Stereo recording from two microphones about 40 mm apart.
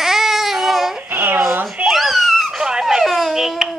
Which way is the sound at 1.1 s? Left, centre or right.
Right.